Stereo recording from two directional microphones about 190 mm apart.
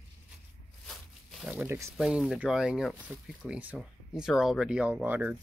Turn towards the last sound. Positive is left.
turn(degrees=-10)  # may be behind; listen again after turning